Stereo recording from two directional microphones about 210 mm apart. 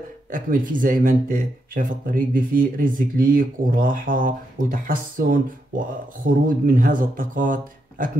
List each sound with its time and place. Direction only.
0.3 s speech: 40° right (ahead or behind)